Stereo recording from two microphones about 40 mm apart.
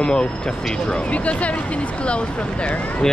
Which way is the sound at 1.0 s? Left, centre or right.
Left.